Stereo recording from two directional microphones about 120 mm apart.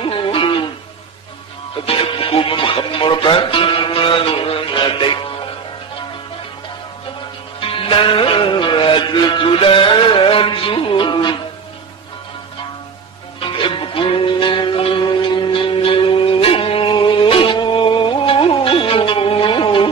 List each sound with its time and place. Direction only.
0.0 s music: 45° left (ahead or behind)
1.9 s music: 45° left (ahead or behind)
7.8 s music: 45° left (ahead or behind)
13.4 s music: 45° left (ahead or behind)